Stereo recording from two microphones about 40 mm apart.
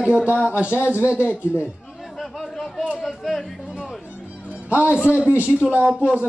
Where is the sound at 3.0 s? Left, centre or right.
Centre.